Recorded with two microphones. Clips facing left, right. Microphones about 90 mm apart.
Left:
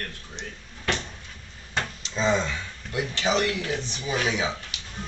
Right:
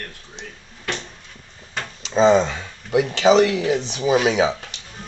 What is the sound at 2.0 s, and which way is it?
Speech, 90° right.